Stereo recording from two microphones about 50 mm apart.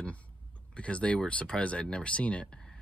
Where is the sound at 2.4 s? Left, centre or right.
Centre.